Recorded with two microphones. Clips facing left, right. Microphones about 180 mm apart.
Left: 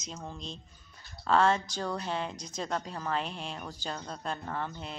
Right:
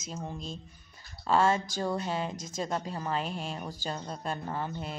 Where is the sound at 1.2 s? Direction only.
5° right (ahead or behind).